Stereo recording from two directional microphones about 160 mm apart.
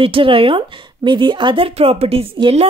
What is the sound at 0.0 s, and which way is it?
A woman's voice, 35° right (ahead or behind).